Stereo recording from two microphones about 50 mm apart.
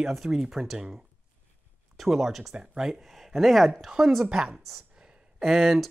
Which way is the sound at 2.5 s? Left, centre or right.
Centre.